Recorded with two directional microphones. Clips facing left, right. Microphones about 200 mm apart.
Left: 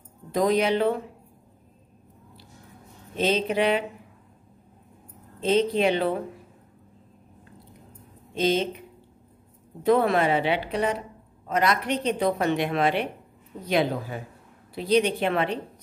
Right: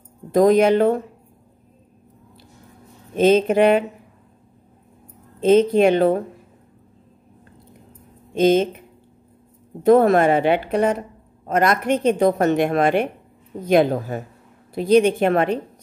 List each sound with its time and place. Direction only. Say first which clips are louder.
0.3 s a woman's voice: right 8 dB; 50° right (ahead or behind)
3.2 s a woman's voice: right 9 dB; 50° right (ahead or behind)
5.4 s a woman's voice: right 8 dB; 50° right (ahead or behind)
8.4 s a woman's voice: right 8 dB; 50° right (ahead or behind)
9.8 s a woman's voice: right 7 dB; 45° right (ahead or behind)